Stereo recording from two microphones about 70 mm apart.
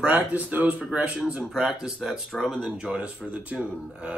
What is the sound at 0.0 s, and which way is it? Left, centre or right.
Speech, right.